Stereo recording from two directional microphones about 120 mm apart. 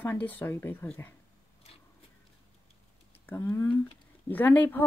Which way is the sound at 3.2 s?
20° left (ahead or behind).